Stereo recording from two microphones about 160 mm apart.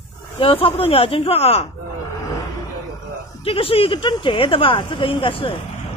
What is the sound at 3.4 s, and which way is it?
Speech, 35° left (ahead or behind).